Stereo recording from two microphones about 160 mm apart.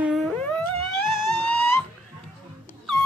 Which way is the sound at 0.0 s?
5° right (ahead or behind).